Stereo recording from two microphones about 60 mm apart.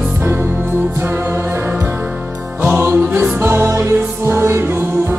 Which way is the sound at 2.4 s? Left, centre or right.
Right.